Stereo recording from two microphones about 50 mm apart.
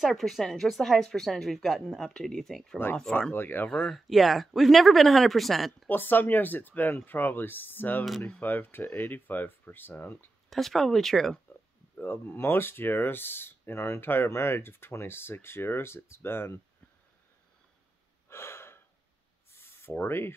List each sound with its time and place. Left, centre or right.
0.0 s speech: centre
3.3 s speech: left
3.9 s speech: centre
5.9 s speech: left
10.5 s speech: centre
12.0 s speech: left
18.3 s gasp: left
19.5 s owl: left